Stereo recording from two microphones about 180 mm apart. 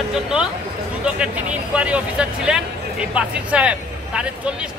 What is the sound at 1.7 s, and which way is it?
Speech, 5° right (ahead or behind).